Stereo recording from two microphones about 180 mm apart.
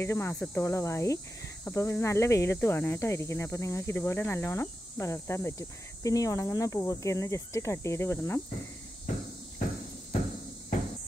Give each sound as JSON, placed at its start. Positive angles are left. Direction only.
{"t": 0.0, "sound": "speech", "side_deg": 15}